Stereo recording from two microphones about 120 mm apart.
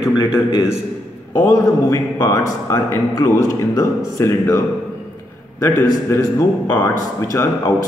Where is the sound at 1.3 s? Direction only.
25° left (ahead or behind).